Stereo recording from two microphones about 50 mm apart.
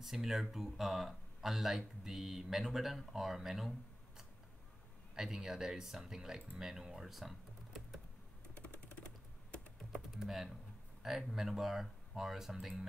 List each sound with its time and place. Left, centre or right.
0.0 s speech: centre
5.1 s speech: centre
8.6 s typing: left
10.1 s speech: centre